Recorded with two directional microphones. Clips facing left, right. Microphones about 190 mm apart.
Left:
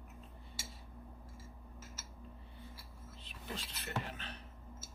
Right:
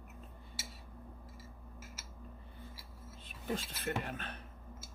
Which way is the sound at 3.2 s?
50° right (ahead or behind).